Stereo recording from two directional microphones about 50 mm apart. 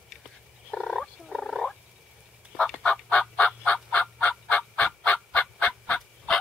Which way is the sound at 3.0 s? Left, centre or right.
Left.